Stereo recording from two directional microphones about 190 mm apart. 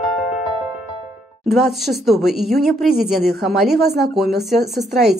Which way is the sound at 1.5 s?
Centre (ahead or behind).